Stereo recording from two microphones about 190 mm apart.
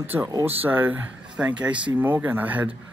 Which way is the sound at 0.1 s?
15° right (ahead or behind).